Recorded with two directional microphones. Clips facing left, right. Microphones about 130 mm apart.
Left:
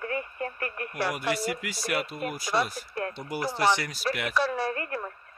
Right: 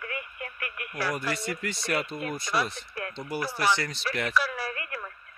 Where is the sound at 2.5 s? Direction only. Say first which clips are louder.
Left 3 dB; 25° left (ahead or behind).